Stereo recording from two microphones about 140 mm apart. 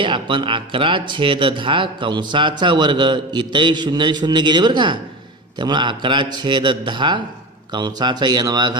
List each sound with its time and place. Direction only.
0.0 s speech: 35° right (ahead or behind)